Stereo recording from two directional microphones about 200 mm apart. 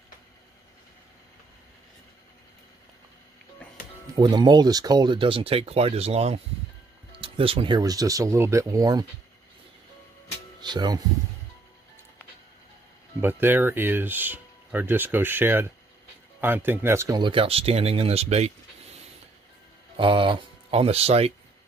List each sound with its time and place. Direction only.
4.1 s speech: 20° right (ahead or behind)
10.6 s speech: 20° right (ahead or behind)
13.2 s speech: 10° right (ahead or behind); by 18.5 s 30° right (ahead or behind)
20.0 s speech: 25° right (ahead or behind)